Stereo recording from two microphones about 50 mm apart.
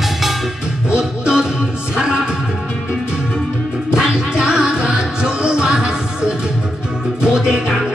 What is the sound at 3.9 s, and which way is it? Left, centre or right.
Music, centre.